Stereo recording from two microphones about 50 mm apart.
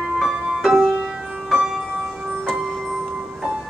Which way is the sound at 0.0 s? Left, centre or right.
Centre.